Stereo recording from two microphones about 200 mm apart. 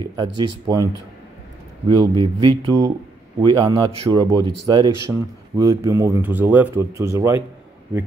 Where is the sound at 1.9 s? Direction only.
20° right (ahead or behind).